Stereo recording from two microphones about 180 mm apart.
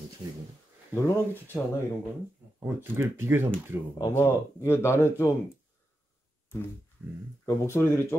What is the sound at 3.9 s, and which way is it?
Speech, 15° left (ahead or behind).